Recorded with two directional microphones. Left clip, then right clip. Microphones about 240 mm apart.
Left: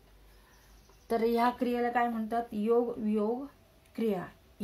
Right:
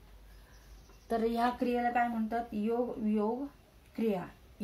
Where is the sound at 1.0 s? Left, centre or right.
Left.